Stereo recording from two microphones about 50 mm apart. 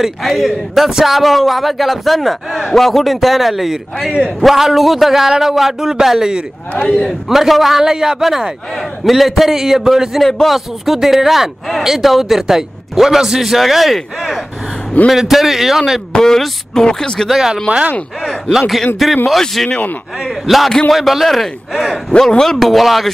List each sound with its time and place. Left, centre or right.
0.2 s speech: centre
6.7 s a man's voice: left
7.2 s a man's voice: centre
16.1 s speech: centre
17.3 s a man's voice: centre
18.5 s speech: centre
22.6 s speech: centre